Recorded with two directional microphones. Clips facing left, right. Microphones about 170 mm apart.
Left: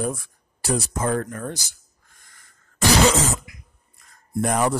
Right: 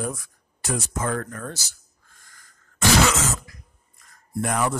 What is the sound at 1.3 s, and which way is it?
Speech, 15° left (ahead or behind).